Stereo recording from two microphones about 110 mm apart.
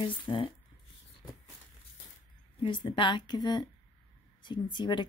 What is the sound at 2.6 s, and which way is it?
Speech, 50° left (ahead or behind).